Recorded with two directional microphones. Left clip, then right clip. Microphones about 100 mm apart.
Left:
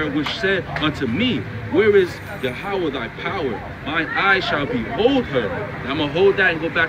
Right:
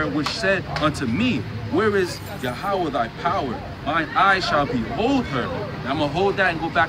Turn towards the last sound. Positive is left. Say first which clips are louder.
# left 2 dB
turn(degrees=-55)  # may be behind; listen again after turning